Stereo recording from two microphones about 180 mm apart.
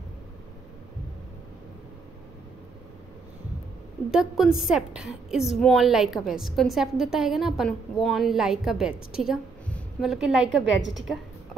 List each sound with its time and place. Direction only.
4.1 s a woman's voice: 5° right (ahead or behind)
10.5 s a woman's voice: 90° right